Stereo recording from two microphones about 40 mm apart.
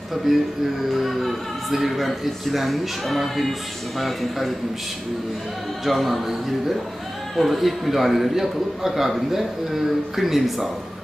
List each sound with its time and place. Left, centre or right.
0.3 s a man's voice: centre
5.9 s a man's voice: centre
7.3 s a man's voice: centre